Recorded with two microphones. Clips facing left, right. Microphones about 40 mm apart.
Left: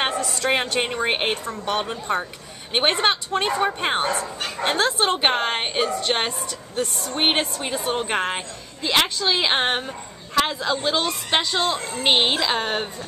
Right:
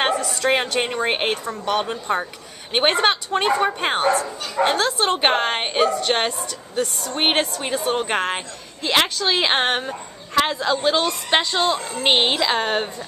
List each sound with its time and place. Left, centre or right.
0.4 s a woman's voice: centre
4.7 s a woman's voice: centre
5.2 s a woman's voice: centre